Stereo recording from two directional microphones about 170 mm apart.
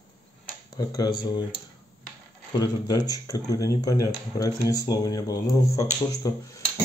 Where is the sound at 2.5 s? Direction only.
20° left (ahead or behind).